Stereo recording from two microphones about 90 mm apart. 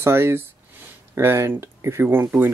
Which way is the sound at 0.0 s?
25° right (ahead or behind).